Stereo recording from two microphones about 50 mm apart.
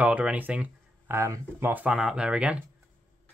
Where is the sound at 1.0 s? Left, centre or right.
Right.